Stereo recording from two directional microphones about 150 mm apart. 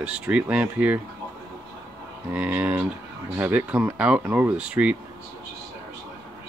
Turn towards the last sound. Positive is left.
turn(degrees=-10)  # may be behind; listen again after turning